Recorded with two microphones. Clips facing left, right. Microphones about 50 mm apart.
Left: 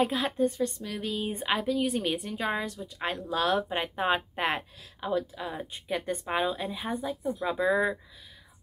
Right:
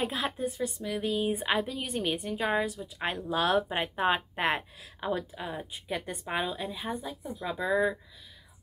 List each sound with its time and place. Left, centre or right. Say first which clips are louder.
0.0 s speech: left 5 dB; centre
5.1 s speech: left 5 dB; centre
5.6 s speech: left 2 dB; centre